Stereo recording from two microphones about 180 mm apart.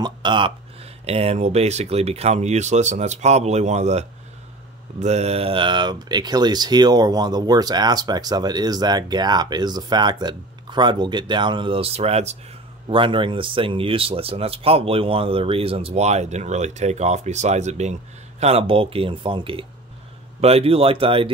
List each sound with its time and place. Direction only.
0.0 s speech: 25° right (ahead or behind)